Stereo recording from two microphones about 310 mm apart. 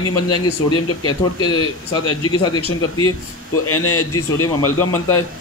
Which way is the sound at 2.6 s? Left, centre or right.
Left.